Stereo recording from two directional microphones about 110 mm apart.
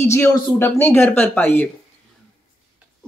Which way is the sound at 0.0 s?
25° left (ahead or behind).